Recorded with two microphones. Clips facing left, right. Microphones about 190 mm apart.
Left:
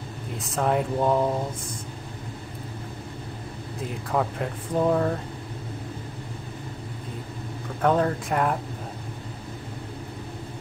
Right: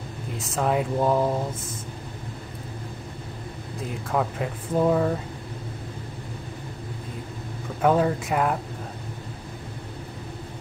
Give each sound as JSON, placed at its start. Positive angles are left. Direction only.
{"t": 0.4, "sound": "speech", "side_deg": 0}
{"t": 3.8, "sound": "speech", "side_deg": 0}
{"t": 7.8, "sound": "speech", "side_deg": -5}